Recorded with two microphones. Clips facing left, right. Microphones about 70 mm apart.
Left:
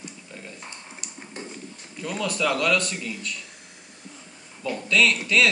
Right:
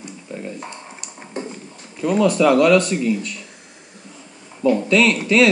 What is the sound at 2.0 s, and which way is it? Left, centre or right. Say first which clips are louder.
Speech: right 11 dB; centre.